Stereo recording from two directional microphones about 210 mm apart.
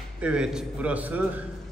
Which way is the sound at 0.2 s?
5° right (ahead or behind).